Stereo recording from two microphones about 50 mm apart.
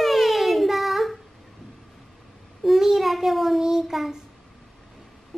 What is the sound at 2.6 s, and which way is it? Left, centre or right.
Child singing, centre.